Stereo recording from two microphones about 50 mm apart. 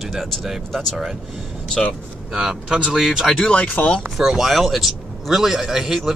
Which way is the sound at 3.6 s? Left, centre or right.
Left.